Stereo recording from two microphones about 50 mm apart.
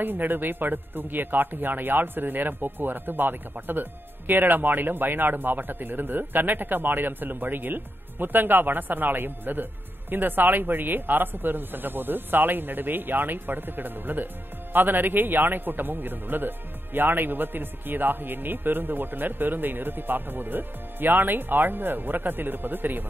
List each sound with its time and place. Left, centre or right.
0.0 s a man's voice: right